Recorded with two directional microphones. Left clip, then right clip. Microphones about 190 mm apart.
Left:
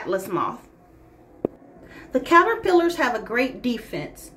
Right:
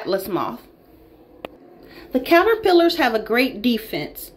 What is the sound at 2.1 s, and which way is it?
Speech, 15° right (ahead or behind).